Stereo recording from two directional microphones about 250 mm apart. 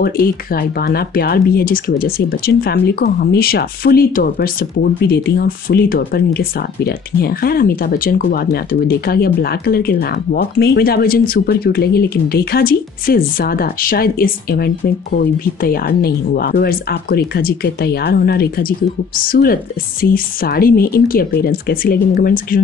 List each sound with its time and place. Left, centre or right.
0.0 s speech: left